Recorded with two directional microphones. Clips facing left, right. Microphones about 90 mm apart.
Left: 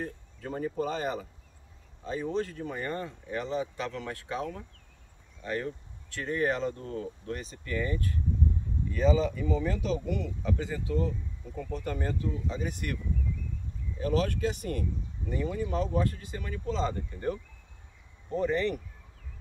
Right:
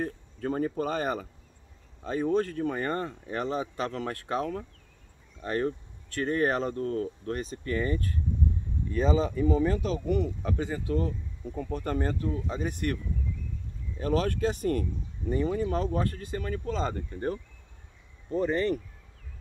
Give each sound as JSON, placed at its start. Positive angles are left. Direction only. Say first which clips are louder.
{"t": 0.0, "sound": "speech", "louder": "right 6 dB", "side_deg": -50}
{"t": 18.4, "sound": "speech", "louder": "right 2 dB", "side_deg": -40}